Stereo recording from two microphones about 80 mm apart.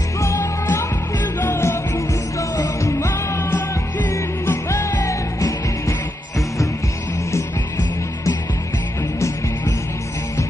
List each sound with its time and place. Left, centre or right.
0.2 s music: left
3.3 s music: left